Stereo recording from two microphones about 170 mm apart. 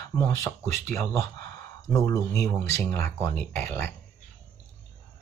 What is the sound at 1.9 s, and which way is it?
Speech, 20° left (ahead or behind).